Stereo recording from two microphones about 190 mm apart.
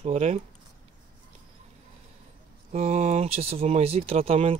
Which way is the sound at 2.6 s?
35° right (ahead or behind).